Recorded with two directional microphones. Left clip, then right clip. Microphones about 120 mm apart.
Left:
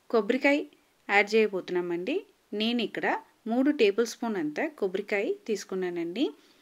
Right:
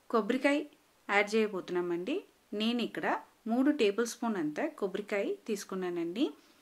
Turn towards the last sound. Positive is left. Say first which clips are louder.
# left 3 dB
turn(degrees=25)  # may be behind; listen again after turning